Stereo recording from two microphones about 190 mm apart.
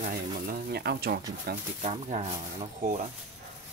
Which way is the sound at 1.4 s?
40° right (ahead or behind).